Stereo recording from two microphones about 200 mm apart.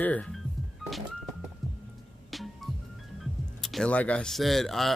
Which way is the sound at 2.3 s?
Centre (ahead or behind).